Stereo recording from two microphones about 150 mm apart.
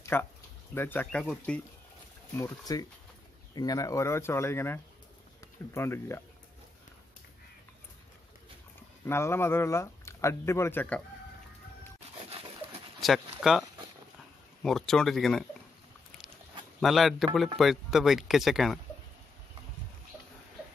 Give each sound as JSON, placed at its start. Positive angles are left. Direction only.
{"t": 0.0, "sound": "speech", "side_deg": 15}
{"t": 2.3, "sound": "speech", "side_deg": 20}
{"t": 9.0, "sound": "speech", "side_deg": 15}
{"t": 12.3, "sound": "a sound", "side_deg": -40}
{"t": 13.4, "sound": "speech", "side_deg": 0}
{"t": 16.8, "sound": "speech", "side_deg": 0}